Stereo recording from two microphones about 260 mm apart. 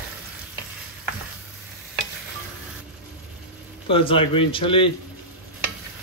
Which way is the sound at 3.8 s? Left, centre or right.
Left.